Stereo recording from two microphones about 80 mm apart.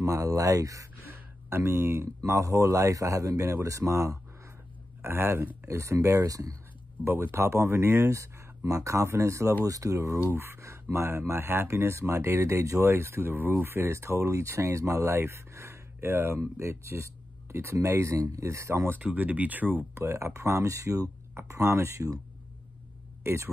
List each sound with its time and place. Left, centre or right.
0.0 s speech: right
1.0 s speech: right
5.0 s speech: right
5.7 s speech: right
7.1 s speech: right
18.9 s speech: right
19.9 s speech: right
23.2 s speech: right